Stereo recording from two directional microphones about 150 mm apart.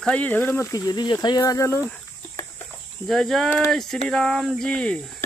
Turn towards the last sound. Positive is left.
turn(degrees=5)  # may be behind; listen again after turning